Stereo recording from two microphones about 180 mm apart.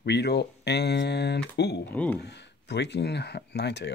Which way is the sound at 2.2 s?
70° left (ahead or behind).